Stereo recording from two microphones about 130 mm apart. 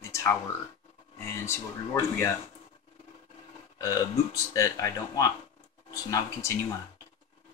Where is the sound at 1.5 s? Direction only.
20° left (ahead or behind).